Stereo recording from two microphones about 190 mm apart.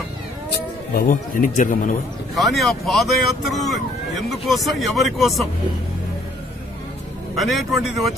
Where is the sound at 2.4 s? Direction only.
Centre (ahead or behind).